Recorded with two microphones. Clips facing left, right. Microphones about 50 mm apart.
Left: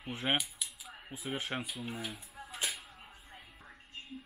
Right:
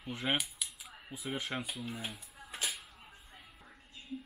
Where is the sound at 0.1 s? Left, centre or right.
Left.